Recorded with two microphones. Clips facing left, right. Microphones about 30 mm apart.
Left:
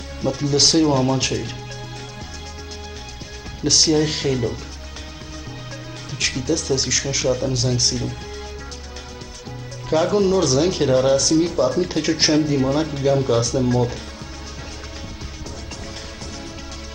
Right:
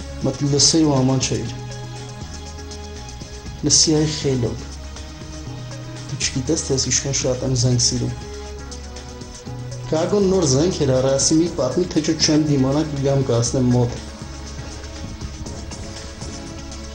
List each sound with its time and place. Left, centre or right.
0.2 s speech: centre
3.6 s speech: centre
6.1 s speech: centre
9.8 s speech: centre